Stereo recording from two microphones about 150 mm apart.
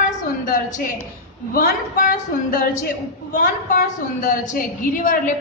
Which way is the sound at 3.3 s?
60° left (ahead or behind).